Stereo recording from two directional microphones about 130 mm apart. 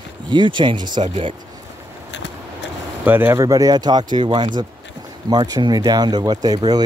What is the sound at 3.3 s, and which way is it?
Speech, 30° right (ahead or behind).